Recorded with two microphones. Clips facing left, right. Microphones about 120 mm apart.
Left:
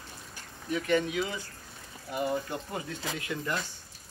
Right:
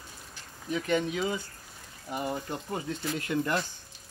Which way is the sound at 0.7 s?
20° right (ahead or behind).